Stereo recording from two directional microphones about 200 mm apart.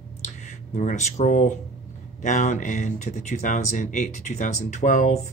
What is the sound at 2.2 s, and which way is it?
Speech, 40° left (ahead or behind).